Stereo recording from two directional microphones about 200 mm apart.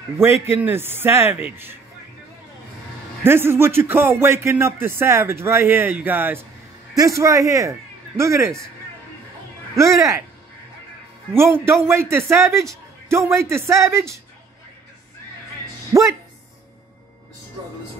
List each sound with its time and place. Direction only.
0.2 s speech: 10° right (ahead or behind)
3.3 s speech: 10° right (ahead or behind)
9.8 s speech: 15° right (ahead or behind)
11.5 s speech: 10° right (ahead or behind)
15.9 s speech: 15° right (ahead or behind)